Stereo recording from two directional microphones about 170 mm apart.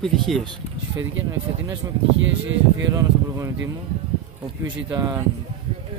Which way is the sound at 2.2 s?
90° right.